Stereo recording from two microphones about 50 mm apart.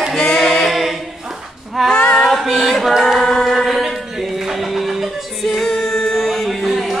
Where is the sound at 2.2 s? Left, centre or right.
Centre.